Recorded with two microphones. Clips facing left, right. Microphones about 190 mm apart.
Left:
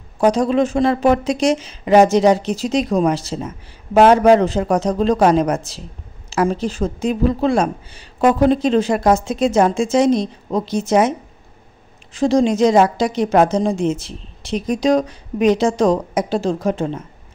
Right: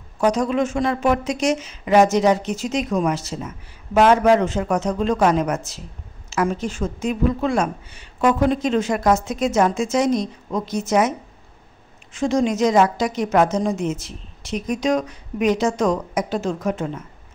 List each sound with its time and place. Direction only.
0.2 s speech: 30° left (ahead or behind)